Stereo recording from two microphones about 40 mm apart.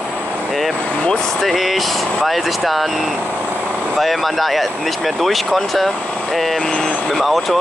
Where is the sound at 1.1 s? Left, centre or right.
Centre.